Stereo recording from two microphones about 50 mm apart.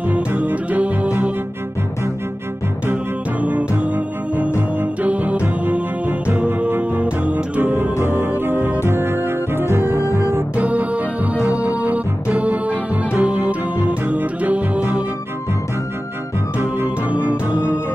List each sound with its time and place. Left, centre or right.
0.5 s music: right
3.3 s music: right
7.6 s music: right
10.5 s music: right
16.5 s music: right